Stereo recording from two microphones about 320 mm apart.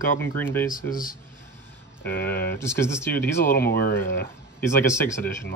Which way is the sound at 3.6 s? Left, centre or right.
Left.